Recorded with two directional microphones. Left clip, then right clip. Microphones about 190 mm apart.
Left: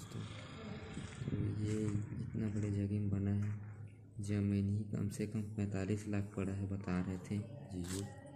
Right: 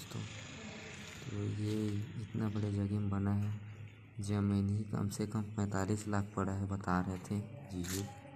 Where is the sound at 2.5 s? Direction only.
Centre (ahead or behind).